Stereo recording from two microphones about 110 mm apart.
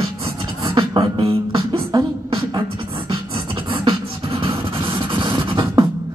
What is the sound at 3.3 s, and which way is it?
Beatboxing, 50° right (ahead or behind).